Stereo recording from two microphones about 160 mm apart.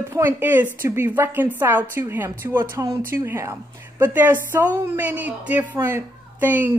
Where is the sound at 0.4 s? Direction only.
10° right (ahead or behind).